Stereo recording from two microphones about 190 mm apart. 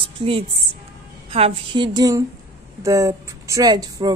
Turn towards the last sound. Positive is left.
turn(degrees=-20)  # may be behind; listen again after turning